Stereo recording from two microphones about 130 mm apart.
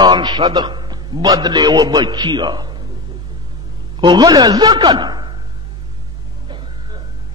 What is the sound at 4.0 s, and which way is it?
A man's voice, 35° right (ahead or behind).